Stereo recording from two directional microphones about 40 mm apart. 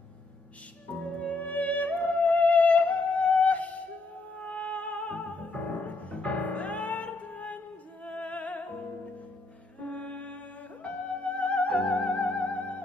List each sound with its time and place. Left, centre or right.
1.2 s music: left
9.8 s music: left